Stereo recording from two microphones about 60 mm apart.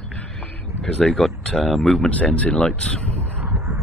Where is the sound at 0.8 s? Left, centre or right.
Centre.